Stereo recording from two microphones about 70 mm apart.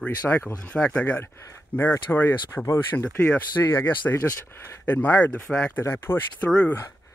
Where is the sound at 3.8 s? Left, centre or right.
Left.